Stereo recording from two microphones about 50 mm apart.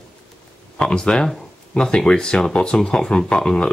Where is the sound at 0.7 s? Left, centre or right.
Centre.